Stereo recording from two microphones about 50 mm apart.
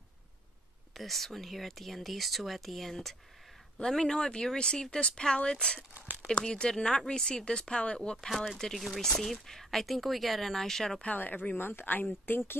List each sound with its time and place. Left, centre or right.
0.9 s speech: centre
5.9 s a sound: right
6.3 s speech: centre
8.5 s speech: centre
11.1 s speech: left